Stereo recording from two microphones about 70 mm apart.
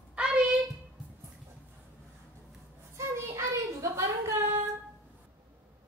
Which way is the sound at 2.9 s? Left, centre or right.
Right.